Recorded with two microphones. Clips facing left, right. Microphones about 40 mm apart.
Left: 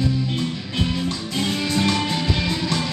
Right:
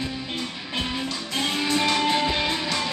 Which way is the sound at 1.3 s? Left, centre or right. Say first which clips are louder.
Even; centre.